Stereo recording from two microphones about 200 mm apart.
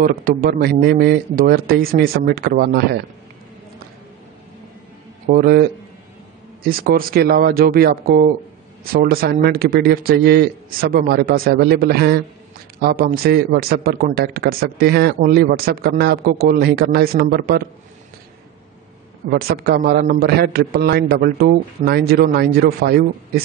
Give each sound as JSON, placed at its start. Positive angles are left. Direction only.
{"t": 0.0, "sound": "a man's voice", "side_deg": -45}
{"t": 5.2, "sound": "a man's voice", "side_deg": -45}
{"t": 19.3, "sound": "a man's voice", "side_deg": -50}